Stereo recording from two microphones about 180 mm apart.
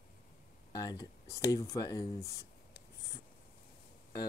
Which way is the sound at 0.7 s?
20° left (ahead or behind).